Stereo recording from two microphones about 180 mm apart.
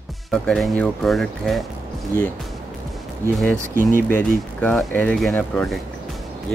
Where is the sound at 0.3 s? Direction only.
5° left (ahead or behind).